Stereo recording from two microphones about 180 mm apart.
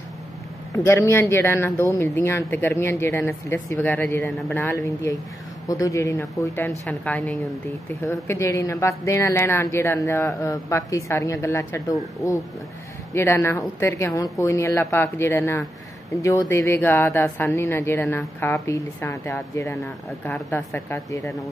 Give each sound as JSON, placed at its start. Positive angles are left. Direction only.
{"t": 0.8, "sound": "a woman's voice", "side_deg": 15}
{"t": 4.3, "sound": "speech", "side_deg": 0}
{"t": 4.6, "sound": "a woman's voice", "side_deg": 15}
{"t": 19.8, "sound": "speech", "side_deg": 0}
{"t": 20.4, "sound": "a woman's voice", "side_deg": 15}